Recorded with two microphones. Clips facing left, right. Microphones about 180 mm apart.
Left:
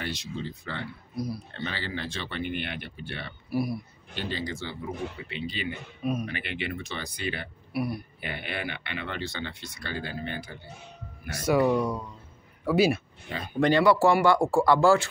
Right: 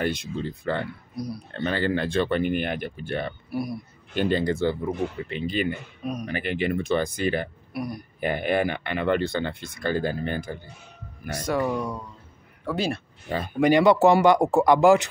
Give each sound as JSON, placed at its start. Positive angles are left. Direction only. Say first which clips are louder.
{"t": 0.0, "sound": "speech", "louder": "right 7 dB", "side_deg": -50}
{"t": 1.1, "sound": "speech", "louder": "left 1 dB", "side_deg": 0}
{"t": 1.5, "sound": "speech", "louder": "right 9 dB", "side_deg": -50}
{"t": 3.4, "sound": "a man's voice", "louder": "left 1 dB", "side_deg": 0}
{"t": 4.1, "sound": "speech", "louder": "right 10 dB", "side_deg": -50}
{"t": 7.7, "sound": "speech", "louder": "left 2 dB", "side_deg": 5}
{"t": 8.2, "sound": "speech", "louder": "right 11 dB", "side_deg": -45}
{"t": 11.4, "sound": "speech", "louder": "left 3 dB", "side_deg": 10}
{"t": 13.6, "sound": "speech", "louder": "right 3 dB", "side_deg": -15}